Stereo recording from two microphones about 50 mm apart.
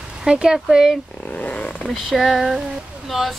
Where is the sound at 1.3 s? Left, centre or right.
Left.